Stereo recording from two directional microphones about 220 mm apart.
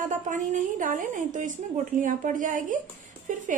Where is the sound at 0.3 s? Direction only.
35° right (ahead or behind).